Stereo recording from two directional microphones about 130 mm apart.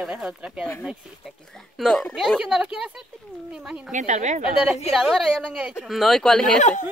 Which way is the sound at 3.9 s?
70° right (ahead or behind).